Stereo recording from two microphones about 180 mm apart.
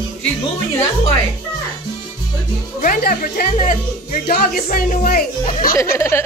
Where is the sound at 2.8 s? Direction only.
50° left (ahead or behind).